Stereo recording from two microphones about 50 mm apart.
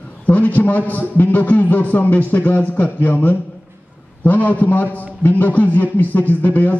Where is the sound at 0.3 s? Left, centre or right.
Left.